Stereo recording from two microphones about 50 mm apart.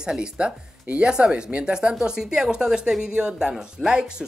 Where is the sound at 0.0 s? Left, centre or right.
Centre.